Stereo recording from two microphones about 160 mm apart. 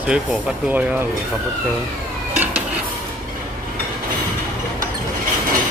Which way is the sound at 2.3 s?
10° right (ahead or behind).